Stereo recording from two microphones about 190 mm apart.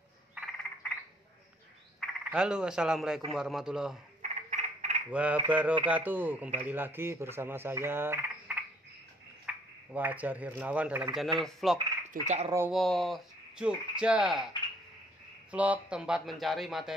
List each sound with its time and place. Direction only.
2.0 s frog: 5° right (ahead or behind)
3.3 s speech: centre (ahead or behind)
4.2 s frog: 35° right (ahead or behind)
5.1 s speech: 5° right (ahead or behind)
9.5 s a sound: 5° right (ahead or behind)
9.9 s speech: 10° right (ahead or behind)
12.1 s speech: 40° right (ahead or behind)
12.4 s speech: 15° right (ahead or behind)
12.7 s speech: centre (ahead or behind)
15.5 s speech: 5° right (ahead or behind)